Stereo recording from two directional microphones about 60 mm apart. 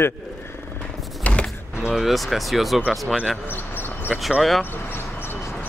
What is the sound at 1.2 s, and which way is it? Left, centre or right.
Power windows, centre.